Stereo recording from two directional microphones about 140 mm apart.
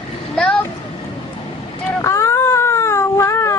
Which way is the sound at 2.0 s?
20° left (ahead or behind).